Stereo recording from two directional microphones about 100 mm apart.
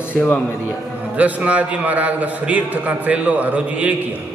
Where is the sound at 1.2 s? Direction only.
15° right (ahead or behind).